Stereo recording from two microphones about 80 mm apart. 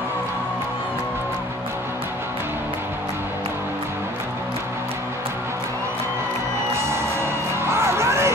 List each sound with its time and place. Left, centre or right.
6.9 s music: right